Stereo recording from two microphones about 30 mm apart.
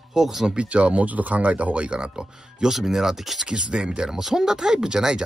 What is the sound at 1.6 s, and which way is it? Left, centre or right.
Speech, right.